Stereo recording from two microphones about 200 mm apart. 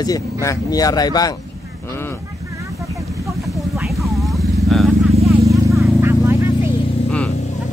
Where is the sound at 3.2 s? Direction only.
Centre (ahead or behind).